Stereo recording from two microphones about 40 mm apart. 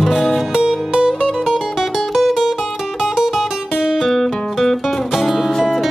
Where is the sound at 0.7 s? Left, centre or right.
Centre.